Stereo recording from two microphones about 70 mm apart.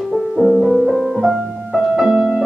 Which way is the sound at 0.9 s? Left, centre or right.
Centre.